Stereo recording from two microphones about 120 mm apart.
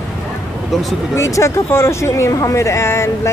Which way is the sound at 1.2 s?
25° left (ahead or behind).